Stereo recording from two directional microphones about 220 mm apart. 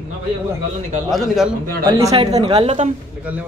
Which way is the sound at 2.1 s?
25° right (ahead or behind).